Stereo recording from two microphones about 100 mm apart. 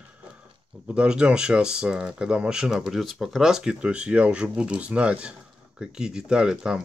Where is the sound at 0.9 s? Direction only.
10° right (ahead or behind).